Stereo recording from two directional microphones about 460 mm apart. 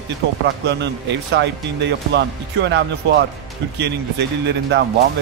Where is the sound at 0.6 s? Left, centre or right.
Right.